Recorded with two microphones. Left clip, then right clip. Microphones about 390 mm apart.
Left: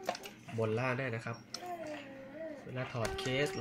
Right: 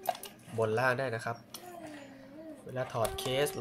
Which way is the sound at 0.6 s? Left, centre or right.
Right.